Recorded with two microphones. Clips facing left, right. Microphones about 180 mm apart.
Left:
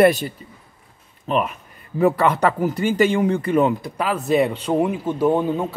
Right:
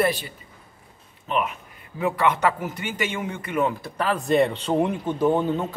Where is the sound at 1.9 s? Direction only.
40° left (ahead or behind).